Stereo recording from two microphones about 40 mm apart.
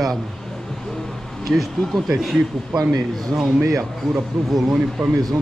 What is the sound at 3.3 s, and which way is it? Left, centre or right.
Speech, centre.